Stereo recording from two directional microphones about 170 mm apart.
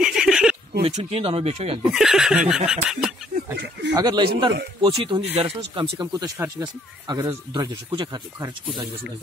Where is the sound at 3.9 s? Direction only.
25° right (ahead or behind).